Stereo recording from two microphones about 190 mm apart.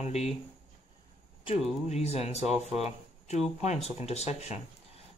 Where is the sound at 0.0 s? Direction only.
35° left (ahead or behind).